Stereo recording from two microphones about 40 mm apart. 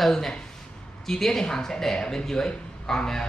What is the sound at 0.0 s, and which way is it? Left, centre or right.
A man's voice, centre.